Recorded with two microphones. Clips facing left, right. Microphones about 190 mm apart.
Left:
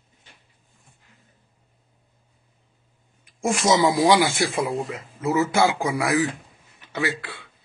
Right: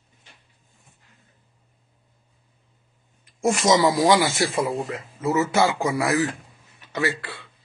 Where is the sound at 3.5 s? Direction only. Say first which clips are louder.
Right 1 dB; 10° left (ahead or behind).